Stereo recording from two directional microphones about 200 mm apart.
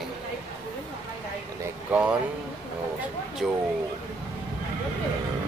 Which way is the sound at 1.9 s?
5° right (ahead or behind).